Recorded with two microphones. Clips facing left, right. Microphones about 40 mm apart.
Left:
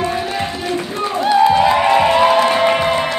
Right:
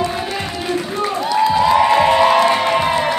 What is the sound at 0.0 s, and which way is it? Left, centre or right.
Run, left.